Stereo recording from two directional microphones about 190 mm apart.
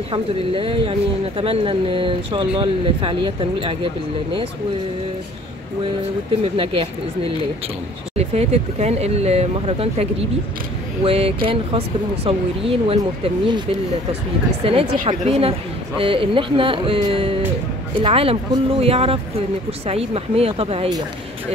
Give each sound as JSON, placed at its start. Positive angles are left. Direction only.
{"t": 0.1, "sound": "speech", "side_deg": -30}
{"t": 6.4, "sound": "speech", "side_deg": -30}
{"t": 11.1, "sound": "speech", "side_deg": -30}
{"t": 14.6, "sound": "speech", "side_deg": -30}